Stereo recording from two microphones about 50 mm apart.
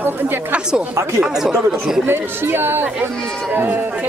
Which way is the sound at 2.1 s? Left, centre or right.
Right.